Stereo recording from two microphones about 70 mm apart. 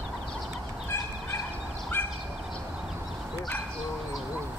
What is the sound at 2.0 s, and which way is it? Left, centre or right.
Bird, left.